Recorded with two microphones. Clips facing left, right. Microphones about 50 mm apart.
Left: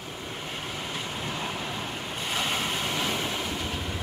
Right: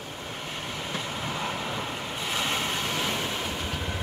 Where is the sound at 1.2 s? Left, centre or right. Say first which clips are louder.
Right 2 dB; centre.